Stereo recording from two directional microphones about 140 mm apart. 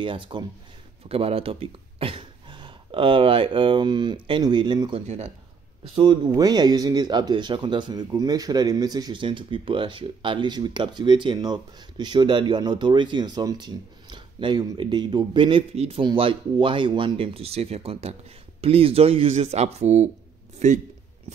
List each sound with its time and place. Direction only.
0.0 s speech: 35° right (ahead or behind)
5.0 s speech: 55° right (ahead or behind)
5.9 s speech: 35° right (ahead or behind)
15.7 s a man's voice: 45° right (ahead or behind)